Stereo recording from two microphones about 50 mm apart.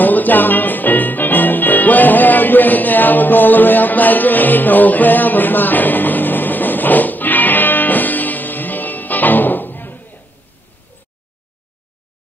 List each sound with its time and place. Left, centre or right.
0.0 s music: left